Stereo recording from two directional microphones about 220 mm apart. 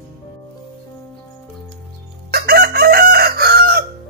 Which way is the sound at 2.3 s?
45° right (ahead or behind).